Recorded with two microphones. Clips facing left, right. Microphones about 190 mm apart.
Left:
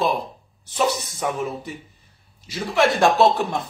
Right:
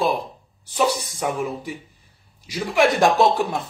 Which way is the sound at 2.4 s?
15° right (ahead or behind).